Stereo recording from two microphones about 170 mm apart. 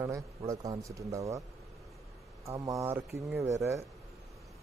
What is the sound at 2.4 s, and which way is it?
Speech, 20° right (ahead or behind).